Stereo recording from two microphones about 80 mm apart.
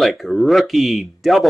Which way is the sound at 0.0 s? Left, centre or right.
Centre.